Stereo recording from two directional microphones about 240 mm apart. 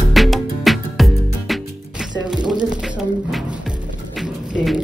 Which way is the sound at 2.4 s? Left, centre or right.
Centre.